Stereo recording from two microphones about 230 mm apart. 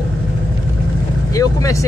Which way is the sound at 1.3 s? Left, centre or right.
Centre.